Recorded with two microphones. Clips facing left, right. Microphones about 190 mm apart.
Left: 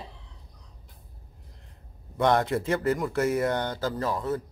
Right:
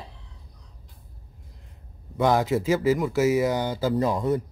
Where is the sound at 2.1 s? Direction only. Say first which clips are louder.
Right 2 dB; centre (ahead or behind).